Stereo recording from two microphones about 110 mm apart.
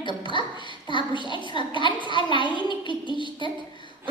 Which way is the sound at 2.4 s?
45° left (ahead or behind).